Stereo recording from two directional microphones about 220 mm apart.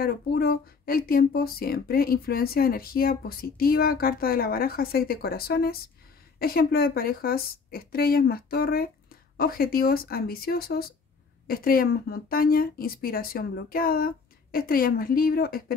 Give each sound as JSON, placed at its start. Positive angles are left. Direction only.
{"t": 0.0, "sound": "speech", "side_deg": 45}